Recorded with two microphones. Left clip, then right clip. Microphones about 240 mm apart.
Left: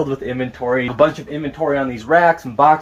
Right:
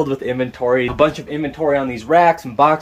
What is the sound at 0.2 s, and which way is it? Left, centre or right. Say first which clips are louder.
Speech: right 3 dB; centre.